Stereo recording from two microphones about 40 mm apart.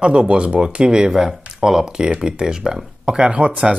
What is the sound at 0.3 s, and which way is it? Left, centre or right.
Speech, right.